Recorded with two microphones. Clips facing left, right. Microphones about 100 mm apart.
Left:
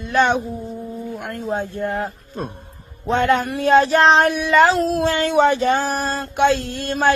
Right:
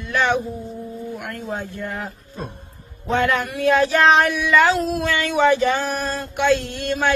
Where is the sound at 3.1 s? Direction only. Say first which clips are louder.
Left 3 dB; 30° left (ahead or behind).